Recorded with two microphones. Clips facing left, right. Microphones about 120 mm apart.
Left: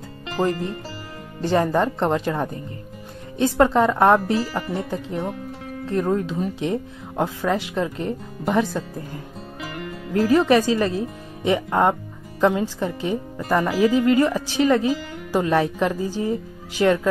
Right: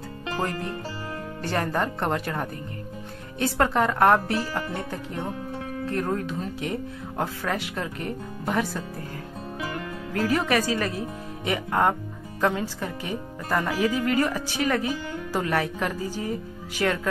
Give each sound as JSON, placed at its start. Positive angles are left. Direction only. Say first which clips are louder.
{"t": 0.4, "sound": "speech", "louder": "left 7 dB", "side_deg": 20}
{"t": 10.3, "sound": "speech", "louder": "left 8 dB", "side_deg": 20}